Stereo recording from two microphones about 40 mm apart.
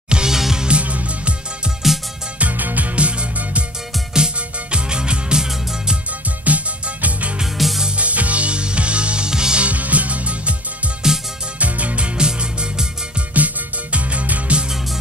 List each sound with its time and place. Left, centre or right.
0.1 s music: centre
0.7 s music: right
1.8 s music: centre
2.5 s music: right
3.0 s music: right
6.4 s music: right
7.5 s music: centre
8.0 s music: right; by 9.6 s centre
9.6 s music: right
11.0 s music: centre
11.6 s music: right
13.4 s music: right